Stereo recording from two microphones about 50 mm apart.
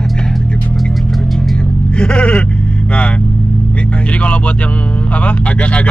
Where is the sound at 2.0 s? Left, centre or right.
Left.